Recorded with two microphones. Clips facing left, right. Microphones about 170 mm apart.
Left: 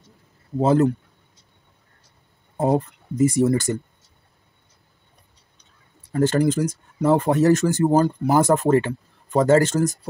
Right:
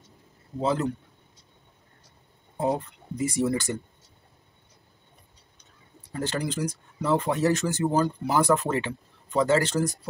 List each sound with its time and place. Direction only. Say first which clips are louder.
0.6 s speech: left 8 dB; 50° left (ahead or behind)
2.5 s speech: left 6 dB; 50° left (ahead or behind)
6.1 s speech: left 10 dB; 45° left (ahead or behind)